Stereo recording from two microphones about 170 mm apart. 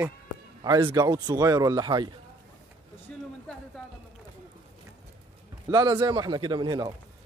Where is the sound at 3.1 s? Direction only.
5° left (ahead or behind).